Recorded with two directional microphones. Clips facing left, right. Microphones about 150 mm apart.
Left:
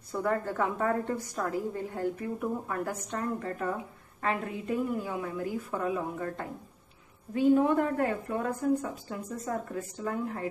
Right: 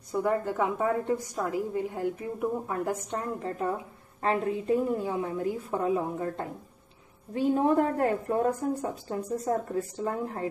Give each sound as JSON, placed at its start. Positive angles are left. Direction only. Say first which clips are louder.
{"t": 0.1, "sound": "a woman's voice", "louder": "right 3 dB", "side_deg": -15}